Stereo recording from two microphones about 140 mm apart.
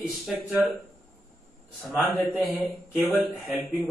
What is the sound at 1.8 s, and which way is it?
Speech, centre (ahead or behind).